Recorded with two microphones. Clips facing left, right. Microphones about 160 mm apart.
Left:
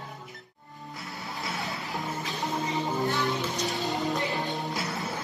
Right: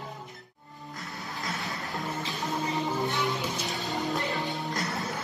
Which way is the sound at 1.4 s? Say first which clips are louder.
Left 1 dB; centre (ahead or behind).